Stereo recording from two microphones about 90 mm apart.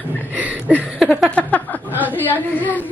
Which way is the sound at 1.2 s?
15° left (ahead or behind).